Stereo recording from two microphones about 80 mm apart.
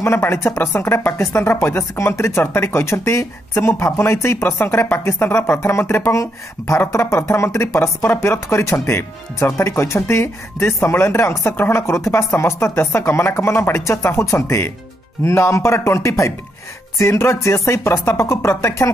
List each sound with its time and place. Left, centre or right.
0.0 s speech: left